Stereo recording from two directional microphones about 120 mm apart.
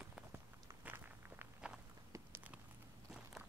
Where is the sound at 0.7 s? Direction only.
15° right (ahead or behind).